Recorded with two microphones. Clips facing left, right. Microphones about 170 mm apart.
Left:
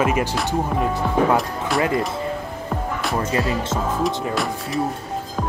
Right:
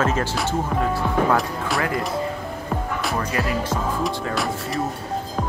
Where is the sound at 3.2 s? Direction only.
25° left (ahead or behind).